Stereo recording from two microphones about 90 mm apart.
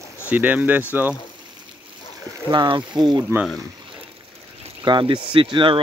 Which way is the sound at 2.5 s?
60° right (ahead or behind).